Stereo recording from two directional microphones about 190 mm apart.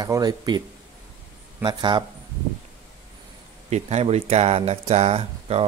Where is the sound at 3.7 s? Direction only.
35° right (ahead or behind).